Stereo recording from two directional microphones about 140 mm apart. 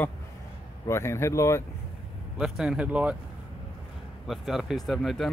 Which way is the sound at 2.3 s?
Centre (ahead or behind).